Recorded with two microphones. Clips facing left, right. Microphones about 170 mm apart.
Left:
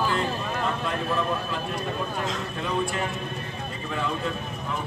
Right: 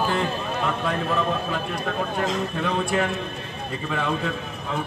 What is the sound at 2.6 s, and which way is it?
Speech, 75° right (ahead or behind).